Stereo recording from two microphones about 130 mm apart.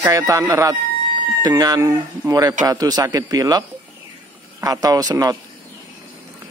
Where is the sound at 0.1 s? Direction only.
25° right (ahead or behind).